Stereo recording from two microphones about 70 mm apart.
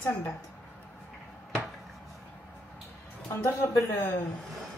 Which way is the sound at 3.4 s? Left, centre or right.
Left.